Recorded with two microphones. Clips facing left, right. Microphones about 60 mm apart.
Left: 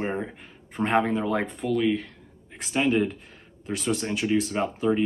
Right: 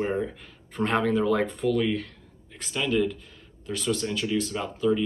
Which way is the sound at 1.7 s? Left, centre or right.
Centre.